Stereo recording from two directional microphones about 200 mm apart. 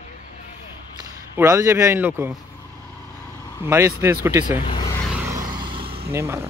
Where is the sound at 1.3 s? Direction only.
15° right (ahead or behind).